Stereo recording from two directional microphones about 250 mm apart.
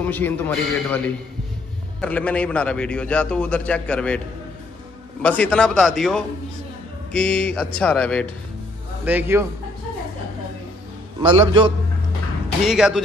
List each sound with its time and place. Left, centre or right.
0.0 s a man's voice: centre
5.2 s a man's voice: centre
9.0 s a man's voice: centre
11.1 s a man's voice: centre
12.6 s a man's voice: centre